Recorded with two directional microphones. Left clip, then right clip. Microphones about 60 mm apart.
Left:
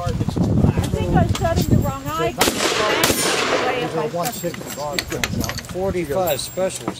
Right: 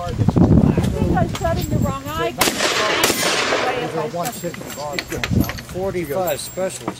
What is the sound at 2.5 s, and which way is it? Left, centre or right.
Speech, right.